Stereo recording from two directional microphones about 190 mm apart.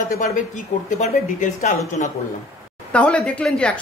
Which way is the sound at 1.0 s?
40° left (ahead or behind).